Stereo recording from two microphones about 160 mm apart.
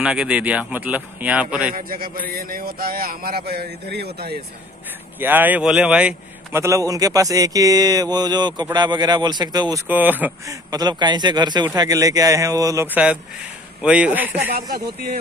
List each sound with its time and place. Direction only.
0.0 s speech: 5° right (ahead or behind)
1.7 s speech: 65° right (ahead or behind); by 4.4 s 85° right
5.2 s speech: 10° right (ahead or behind)
6.6 s a man's voice: 20° right (ahead or behind)
9.8 s a man's voice: 10° right (ahead or behind)
12.8 s speech: 10° right (ahead or behind)
14.7 s speech: 70° right (ahead or behind)